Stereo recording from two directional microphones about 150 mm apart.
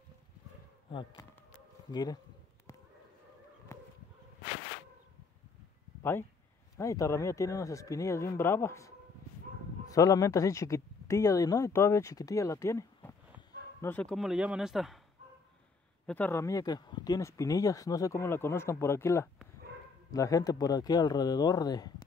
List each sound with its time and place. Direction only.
1.9 s speech: 25° left (ahead or behind)
6.8 s speech: 20° left (ahead or behind)
14.1 s speech: 5° right (ahead or behind)
16.1 s speech: 10° left (ahead or behind)